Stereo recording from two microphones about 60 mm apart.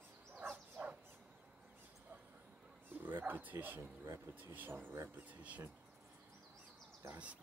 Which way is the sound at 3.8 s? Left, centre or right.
Right.